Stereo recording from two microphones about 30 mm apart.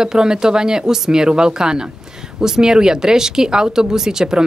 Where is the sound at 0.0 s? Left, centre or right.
Right.